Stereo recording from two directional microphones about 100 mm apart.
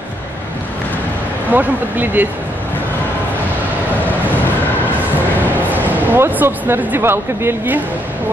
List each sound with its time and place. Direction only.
1.5 s speech: 20° right (ahead or behind)
5.9 s speech: 20° right (ahead or behind)